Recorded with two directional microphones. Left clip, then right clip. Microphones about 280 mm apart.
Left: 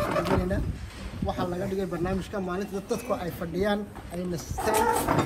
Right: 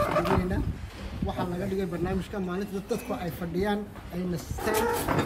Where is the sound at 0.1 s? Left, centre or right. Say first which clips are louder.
Right 1 dB; centre.